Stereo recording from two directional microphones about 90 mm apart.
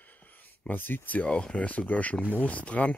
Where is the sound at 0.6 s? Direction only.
20° left (ahead or behind).